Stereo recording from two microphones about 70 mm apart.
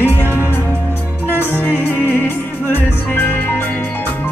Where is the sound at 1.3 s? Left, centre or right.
Left.